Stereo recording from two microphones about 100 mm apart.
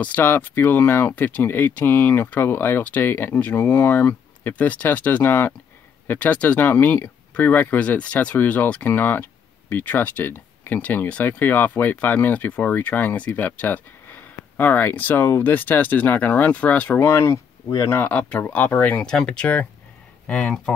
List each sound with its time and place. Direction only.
0.0 s speech: 15° left (ahead or behind)
17.1 s speech: 25° left (ahead or behind)
17.9 s speech: 15° left (ahead or behind)
18.9 s speech: 5° left (ahead or behind)
19.4 s speech: 15° left (ahead or behind)